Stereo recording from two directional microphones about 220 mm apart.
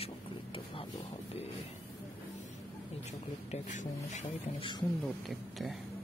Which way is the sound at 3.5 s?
35° left (ahead or behind).